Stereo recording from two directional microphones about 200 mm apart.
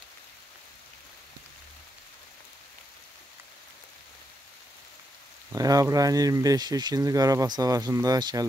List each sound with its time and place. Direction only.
5.5 s speech: 15° right (ahead or behind)